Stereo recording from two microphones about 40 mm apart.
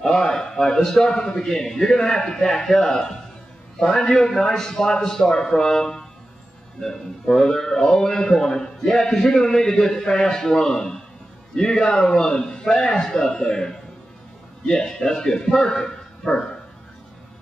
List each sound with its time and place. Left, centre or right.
0.0 s speech: centre